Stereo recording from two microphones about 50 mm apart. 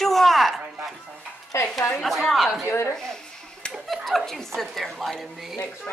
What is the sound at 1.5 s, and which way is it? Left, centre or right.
Speech, left.